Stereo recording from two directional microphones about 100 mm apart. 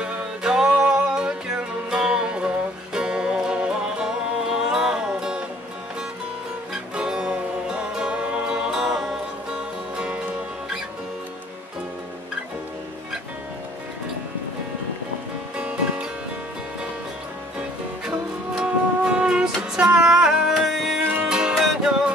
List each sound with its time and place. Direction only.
0.0 s music: 10° right (ahead or behind)
6.7 s music: 5° right (ahead or behind)
15.5 s music: 10° right (ahead or behind)
18.0 s music: 5° right (ahead or behind)